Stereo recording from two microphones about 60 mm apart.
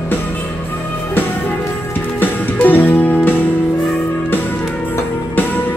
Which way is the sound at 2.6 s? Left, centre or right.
Left.